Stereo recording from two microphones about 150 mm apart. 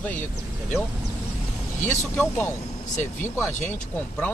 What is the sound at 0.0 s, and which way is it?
Speech, 10° left (ahead or behind).